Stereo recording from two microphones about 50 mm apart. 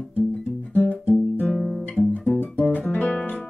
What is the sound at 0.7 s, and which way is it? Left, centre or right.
Guitar, left.